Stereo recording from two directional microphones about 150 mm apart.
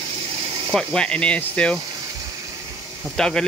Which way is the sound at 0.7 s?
5° left (ahead or behind).